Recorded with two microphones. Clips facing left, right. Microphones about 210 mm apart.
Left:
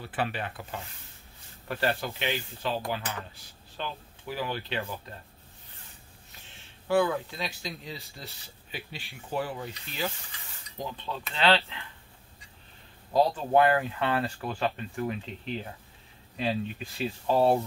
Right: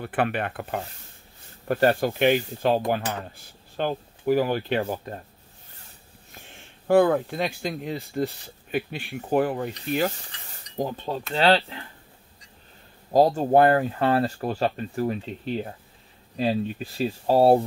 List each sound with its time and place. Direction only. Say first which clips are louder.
0.0 s speech: right 7 dB; 55° right (ahead or behind)
1.7 s speech: right 9 dB; 45° right (ahead or behind)
6.9 s speech: right 7 dB; 50° right (ahead or behind)
13.1 s speech: right 5 dB; 45° right (ahead or behind)